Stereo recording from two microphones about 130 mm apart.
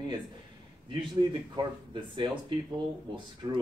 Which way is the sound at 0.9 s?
35° right (ahead or behind).